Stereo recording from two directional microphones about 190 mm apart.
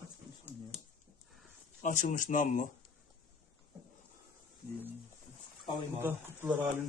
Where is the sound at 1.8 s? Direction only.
45° left (ahead or behind).